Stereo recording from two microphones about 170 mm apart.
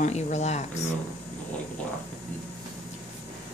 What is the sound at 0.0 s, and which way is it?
Speech, 40° left (ahead or behind).